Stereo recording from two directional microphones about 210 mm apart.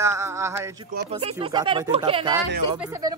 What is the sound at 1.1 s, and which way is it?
A man's voice, 25° right (ahead or behind).